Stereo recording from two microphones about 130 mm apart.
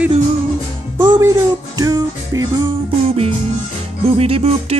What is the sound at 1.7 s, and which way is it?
Music, 30° right (ahead or behind).